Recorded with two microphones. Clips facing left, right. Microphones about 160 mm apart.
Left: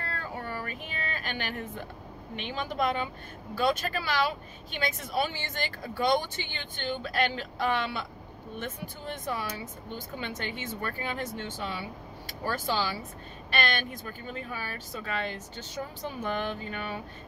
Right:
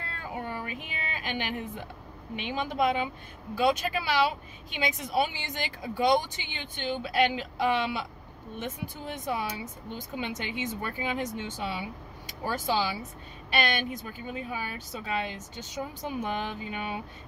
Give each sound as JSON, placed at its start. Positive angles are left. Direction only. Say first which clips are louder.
{"t": 0.1, "sound": "a sound", "louder": "right 3 dB", "side_deg": -15}
{"t": 0.7, "sound": "speech", "louder": "left 1 dB", "side_deg": 45}
{"t": 1.1, "sound": "speech", "louder": "right 5 dB", "side_deg": -15}
{"t": 9.0, "sound": "speech", "louder": "right 2 dB", "side_deg": -10}